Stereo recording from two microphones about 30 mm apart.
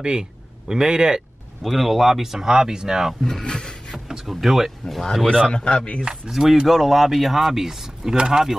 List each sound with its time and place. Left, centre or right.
0.0 s a sound: right
0.8 s speech: right
1.6 s speech: centre; by 3.0 s right
3.2 s speech: centre
3.4 s a sound: left
4.2 s speech: centre
5.2 s a man's voice: centre
5.5 s speech: left
6.0 s speech: centre
6.7 s speech: centre